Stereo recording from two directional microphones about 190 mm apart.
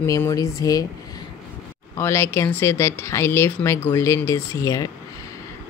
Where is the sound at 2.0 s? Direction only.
15° left (ahead or behind).